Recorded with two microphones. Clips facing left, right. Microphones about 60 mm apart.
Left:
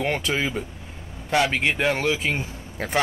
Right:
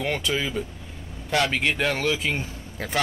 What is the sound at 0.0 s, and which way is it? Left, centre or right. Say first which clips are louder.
A man's voice: left 2 dB; left.